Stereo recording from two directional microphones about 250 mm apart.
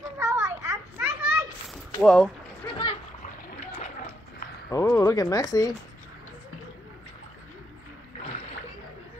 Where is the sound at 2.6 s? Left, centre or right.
Left.